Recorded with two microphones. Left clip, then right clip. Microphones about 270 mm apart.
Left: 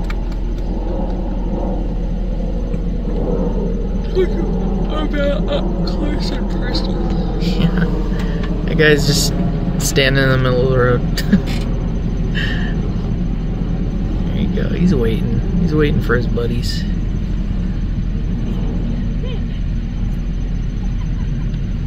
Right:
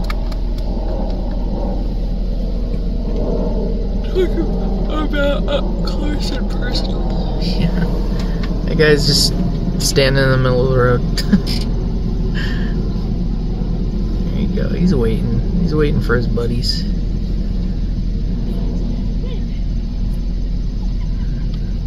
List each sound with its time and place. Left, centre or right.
5.1 s speech: right
7.4 s speech: centre
14.4 s a sound: centre
15.7 s speech: centre